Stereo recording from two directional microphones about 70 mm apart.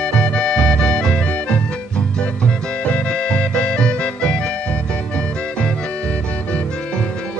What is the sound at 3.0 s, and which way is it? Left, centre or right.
Music, centre.